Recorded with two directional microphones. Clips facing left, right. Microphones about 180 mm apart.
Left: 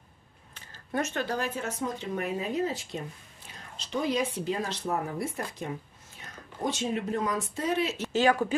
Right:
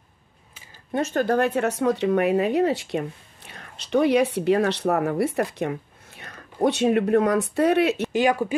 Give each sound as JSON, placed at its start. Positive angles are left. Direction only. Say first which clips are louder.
{"t": 1.1, "sound": "speech", "louder": "right 10 dB", "side_deg": -55}
{"t": 8.1, "sound": "speech", "louder": "right 3 dB", "side_deg": -15}